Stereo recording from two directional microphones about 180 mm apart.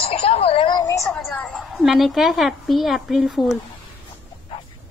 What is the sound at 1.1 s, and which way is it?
A woman's voice, 5° left (ahead or behind).